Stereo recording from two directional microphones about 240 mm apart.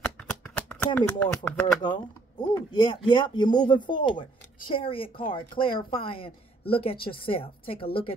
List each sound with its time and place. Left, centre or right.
0.0 s shuffling cards: centre
1.2 s speech: centre
2.7 s speech: centre